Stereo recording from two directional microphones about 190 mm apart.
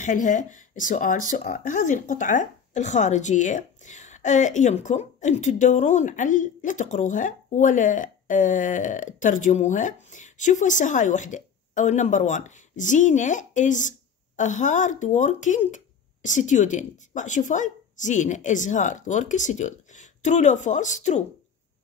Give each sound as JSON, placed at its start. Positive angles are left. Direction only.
{"t": 0.0, "sound": "speech", "side_deg": 45}